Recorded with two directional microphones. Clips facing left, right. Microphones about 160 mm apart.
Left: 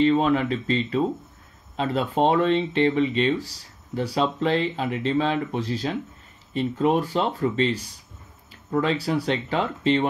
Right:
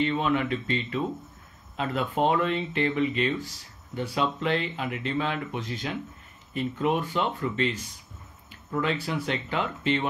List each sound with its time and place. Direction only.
0.0 s speech: 35° left (ahead or behind)